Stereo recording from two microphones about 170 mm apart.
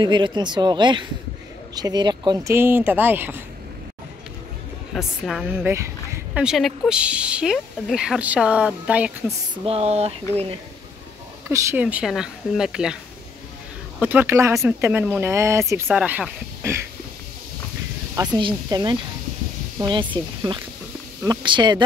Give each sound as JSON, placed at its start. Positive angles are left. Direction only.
{"t": 0.0, "sound": "speech", "side_deg": -25}
{"t": 4.9, "sound": "speech", "side_deg": 0}
{"t": 5.5, "sound": "speech", "side_deg": -15}
{"t": 6.3, "sound": "speech", "side_deg": -5}
{"t": 9.7, "sound": "speech", "side_deg": -35}
{"t": 11.4, "sound": "speech", "side_deg": -15}
{"t": 13.9, "sound": "speech", "side_deg": -10}
{"t": 18.1, "sound": "speech", "side_deg": -25}